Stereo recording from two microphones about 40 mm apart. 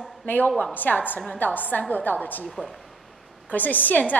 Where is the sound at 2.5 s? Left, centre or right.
Centre.